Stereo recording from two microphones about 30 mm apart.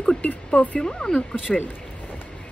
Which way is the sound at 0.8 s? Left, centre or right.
Left.